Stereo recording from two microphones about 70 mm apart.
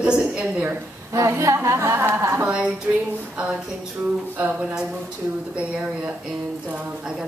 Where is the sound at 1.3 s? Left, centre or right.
Right.